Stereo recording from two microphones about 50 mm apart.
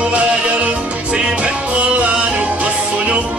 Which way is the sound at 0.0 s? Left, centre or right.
Right.